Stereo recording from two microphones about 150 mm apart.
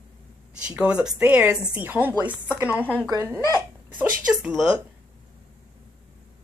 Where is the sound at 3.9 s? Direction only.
5° right (ahead or behind).